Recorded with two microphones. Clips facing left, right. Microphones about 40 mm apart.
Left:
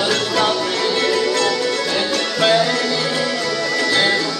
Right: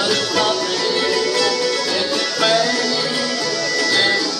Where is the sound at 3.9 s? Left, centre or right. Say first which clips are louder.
Even; left.